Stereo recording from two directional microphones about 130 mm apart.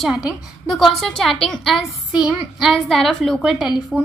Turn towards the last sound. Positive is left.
turn(degrees=0)  # may be behind; listen again after turning